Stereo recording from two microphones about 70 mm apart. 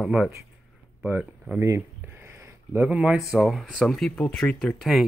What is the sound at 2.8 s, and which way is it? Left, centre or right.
Speech, centre.